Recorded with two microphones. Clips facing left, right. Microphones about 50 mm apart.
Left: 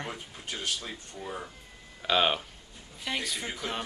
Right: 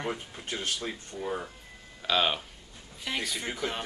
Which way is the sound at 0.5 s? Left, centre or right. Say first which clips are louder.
Right 2 dB; right.